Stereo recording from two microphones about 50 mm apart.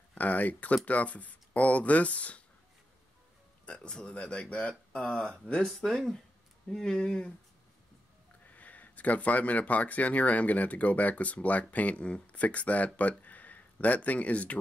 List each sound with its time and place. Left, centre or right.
0.1 s speech: left
3.6 s speech: left
5.8 s speech: centre
8.5 s speech: left